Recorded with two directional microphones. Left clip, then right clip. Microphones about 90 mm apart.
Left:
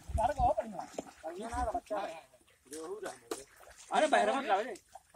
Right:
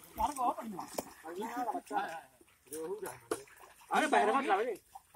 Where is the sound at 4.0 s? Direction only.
5° left (ahead or behind).